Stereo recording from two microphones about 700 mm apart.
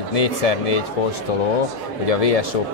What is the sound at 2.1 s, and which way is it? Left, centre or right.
Speech, left.